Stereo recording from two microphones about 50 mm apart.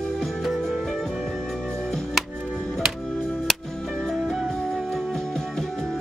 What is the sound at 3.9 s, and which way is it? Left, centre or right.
Music, centre.